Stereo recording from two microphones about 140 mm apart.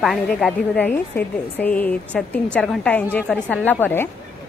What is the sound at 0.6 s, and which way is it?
A woman's voice, 10° left (ahead or behind).